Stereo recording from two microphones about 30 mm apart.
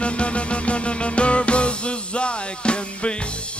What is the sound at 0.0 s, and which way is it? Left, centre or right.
Music, left.